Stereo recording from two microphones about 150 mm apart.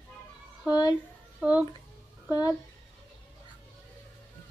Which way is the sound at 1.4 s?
5° right (ahead or behind).